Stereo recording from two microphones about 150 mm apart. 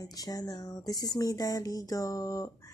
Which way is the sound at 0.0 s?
25° left (ahead or behind).